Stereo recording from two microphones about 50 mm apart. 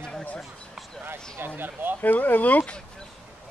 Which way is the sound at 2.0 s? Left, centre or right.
Left.